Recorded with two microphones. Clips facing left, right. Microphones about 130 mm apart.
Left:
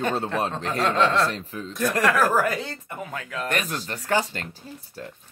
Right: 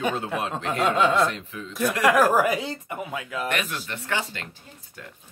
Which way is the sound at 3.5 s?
40° left (ahead or behind).